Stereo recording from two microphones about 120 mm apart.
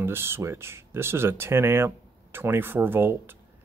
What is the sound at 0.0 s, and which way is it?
Speech, 20° right (ahead or behind).